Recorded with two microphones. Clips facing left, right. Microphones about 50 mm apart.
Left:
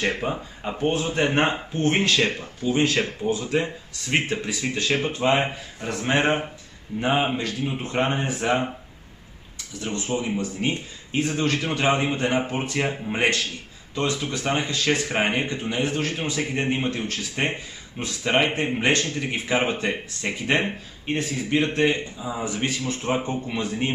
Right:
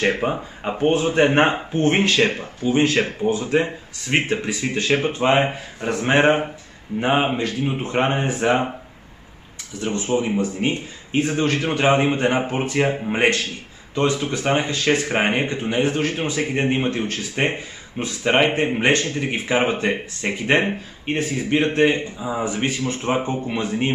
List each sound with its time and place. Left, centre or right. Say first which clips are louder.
0.0 s speech: right 5 dB; right
9.8 s speech: right 5 dB; centre